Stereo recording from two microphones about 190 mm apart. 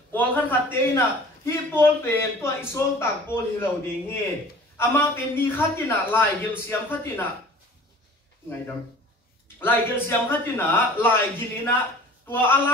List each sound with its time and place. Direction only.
0.1 s a man's voice: 10° left (ahead or behind)
9.6 s a man's voice: 10° left (ahead or behind)
12.3 s a man's voice: 10° left (ahead or behind)